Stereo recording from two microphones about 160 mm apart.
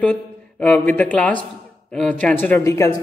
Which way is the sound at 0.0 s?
10° left (ahead or behind).